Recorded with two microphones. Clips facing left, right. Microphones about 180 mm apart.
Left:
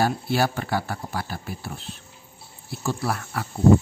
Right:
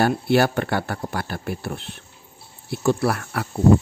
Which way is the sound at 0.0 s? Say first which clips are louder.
Right 4 dB; 65° right (ahead or behind).